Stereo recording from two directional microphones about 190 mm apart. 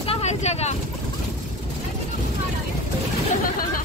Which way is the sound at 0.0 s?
30° left (ahead or behind).